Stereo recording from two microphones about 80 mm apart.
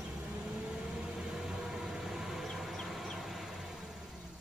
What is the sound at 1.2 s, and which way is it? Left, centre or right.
Vehicle, centre.